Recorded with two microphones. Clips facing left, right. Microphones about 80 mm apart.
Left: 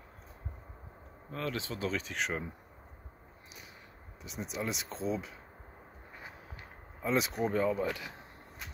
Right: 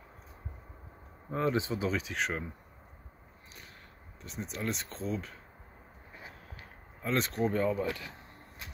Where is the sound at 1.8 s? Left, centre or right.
Centre.